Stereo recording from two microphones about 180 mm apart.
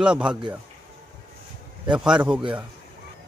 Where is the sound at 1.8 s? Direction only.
5° right (ahead or behind).